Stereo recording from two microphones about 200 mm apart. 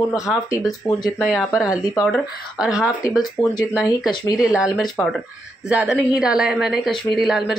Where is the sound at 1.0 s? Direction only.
Centre (ahead or behind).